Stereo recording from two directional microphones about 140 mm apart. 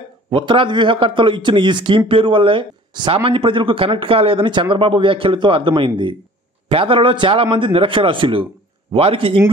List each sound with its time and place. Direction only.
0.3 s a man's voice: 35° right (ahead or behind)